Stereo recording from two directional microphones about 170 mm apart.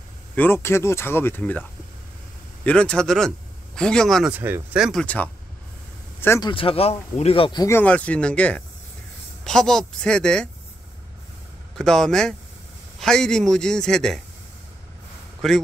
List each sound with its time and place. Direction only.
0.4 s speech: 15° left (ahead or behind)
4.3 s a man's voice: 10° right (ahead or behind)
5.0 s speech: 10° left (ahead or behind)
6.4 s speech: 30° left (ahead or behind)
7.6 s a man's voice: 10° left (ahead or behind)
11.7 s a man's voice: 5° left (ahead or behind)
15.4 s a man's voice: centre (ahead or behind)